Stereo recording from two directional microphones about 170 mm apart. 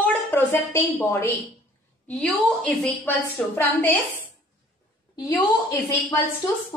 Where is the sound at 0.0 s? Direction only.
10° left (ahead or behind).